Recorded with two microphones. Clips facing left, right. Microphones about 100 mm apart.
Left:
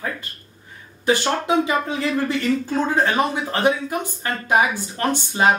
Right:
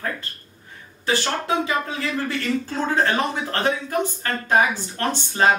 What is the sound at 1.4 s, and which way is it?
Speech, 15° left (ahead or behind).